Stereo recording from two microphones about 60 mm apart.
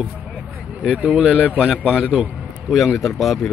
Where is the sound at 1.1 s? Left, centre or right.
Centre.